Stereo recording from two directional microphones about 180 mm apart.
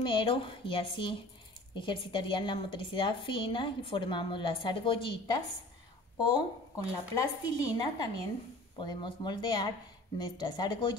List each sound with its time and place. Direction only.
0.0 s a woman's voice: 30° left (ahead or behind)